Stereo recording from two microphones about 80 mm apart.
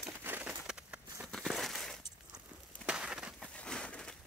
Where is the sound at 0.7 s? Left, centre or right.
Centre.